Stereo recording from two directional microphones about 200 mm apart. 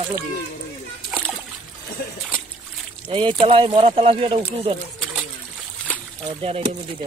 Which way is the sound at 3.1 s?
25° right (ahead or behind).